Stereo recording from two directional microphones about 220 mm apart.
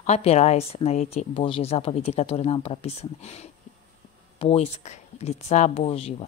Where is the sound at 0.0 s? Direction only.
30° left (ahead or behind).